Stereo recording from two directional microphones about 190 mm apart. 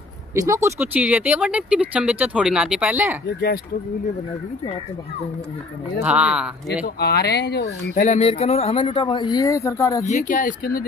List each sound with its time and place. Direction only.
0.3 s speech: 15° right (ahead or behind)
5.9 s speech: 5° right (ahead or behind)
7.0 s speech: 55° left (ahead or behind)
7.9 s speech: 35° left (ahead or behind); by 10.0 s 15° left (ahead or behind)
10.0 s speech: 40° left (ahead or behind)